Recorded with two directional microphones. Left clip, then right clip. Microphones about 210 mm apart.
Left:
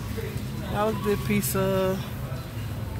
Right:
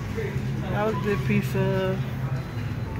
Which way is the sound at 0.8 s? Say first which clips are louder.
Left 1 dB; 25° left (ahead or behind).